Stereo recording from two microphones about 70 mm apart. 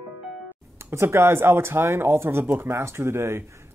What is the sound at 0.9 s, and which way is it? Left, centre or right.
Speech, right.